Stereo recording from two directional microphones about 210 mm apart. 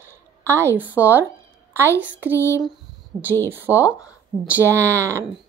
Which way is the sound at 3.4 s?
10° right (ahead or behind).